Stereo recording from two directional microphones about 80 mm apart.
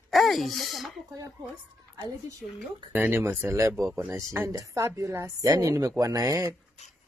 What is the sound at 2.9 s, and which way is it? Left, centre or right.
A woman's voice, right.